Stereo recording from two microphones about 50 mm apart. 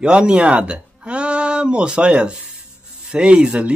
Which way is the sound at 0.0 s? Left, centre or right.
Centre.